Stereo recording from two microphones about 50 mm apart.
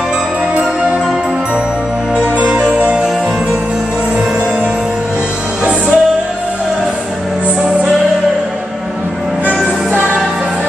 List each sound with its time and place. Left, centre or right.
2.6 s music: centre
5.6 s music: right